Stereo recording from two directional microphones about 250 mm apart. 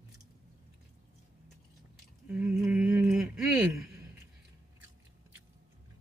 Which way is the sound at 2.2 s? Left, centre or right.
Centre.